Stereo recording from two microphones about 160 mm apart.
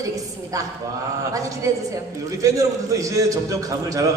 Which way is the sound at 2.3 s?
20° right (ahead or behind).